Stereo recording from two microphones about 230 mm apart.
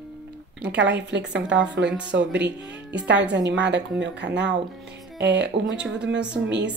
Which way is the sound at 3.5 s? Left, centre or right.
Right.